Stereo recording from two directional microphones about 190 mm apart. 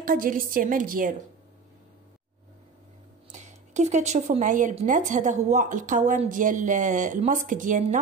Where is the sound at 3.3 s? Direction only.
40° right (ahead or behind).